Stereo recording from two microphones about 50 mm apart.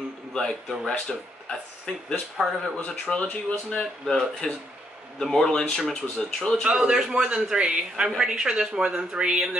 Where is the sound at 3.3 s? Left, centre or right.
Centre.